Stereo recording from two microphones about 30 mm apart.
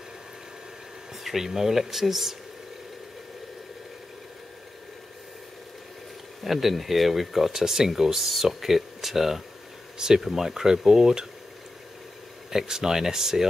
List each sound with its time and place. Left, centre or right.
1.2 s speech: centre
6.4 s speech: centre
9.9 s speech: right
10.2 s speech: centre
12.4 s speech: centre